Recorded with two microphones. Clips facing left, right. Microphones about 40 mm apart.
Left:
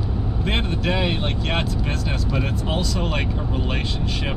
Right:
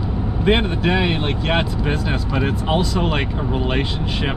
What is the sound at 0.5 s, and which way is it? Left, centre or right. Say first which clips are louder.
Speech: right 4 dB; centre.